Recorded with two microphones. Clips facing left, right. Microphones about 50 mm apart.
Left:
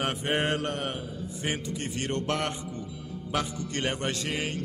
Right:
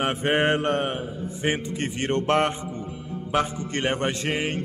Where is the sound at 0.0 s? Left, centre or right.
Right.